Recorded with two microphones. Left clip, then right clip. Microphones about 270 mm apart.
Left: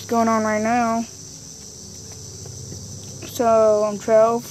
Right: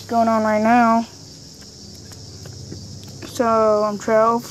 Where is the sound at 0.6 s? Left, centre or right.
Centre.